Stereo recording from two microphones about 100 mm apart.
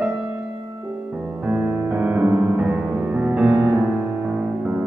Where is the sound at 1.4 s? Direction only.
10° right (ahead or behind).